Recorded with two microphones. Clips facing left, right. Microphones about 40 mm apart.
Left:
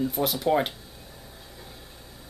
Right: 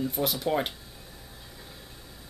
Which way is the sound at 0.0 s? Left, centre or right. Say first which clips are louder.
Left 3 dB; centre.